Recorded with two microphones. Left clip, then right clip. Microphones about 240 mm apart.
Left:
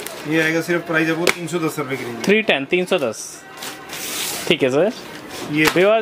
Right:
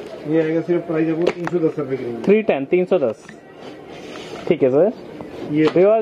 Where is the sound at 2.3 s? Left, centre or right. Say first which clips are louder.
Even; left.